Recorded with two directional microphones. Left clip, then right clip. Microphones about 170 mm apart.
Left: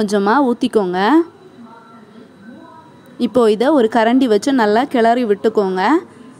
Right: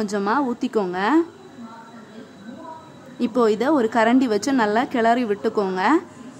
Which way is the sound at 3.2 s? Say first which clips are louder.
Left 6 dB; 40° left (ahead or behind).